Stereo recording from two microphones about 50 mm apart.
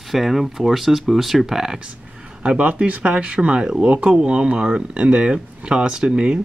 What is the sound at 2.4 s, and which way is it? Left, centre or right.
Speech, right.